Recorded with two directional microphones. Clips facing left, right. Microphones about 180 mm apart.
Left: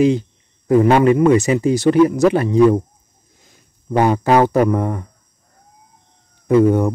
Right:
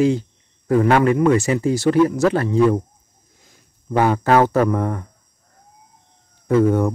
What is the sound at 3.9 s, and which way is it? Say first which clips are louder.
Speech: left 2 dB; 15° left (ahead or behind).